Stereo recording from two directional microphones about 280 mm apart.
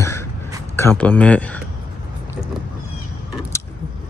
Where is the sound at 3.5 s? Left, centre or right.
Centre.